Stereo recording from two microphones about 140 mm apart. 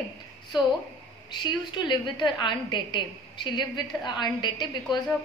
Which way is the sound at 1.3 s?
30° left (ahead or behind).